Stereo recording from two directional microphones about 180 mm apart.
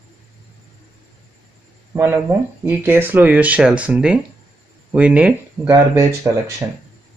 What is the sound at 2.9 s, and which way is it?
Speech, 10° right (ahead or behind).